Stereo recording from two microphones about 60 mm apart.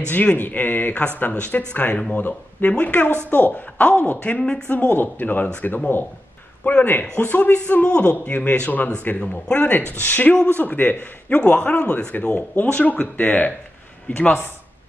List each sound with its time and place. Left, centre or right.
0.1 s speech: left
4.4 s speech: centre
4.6 s a man's voice: left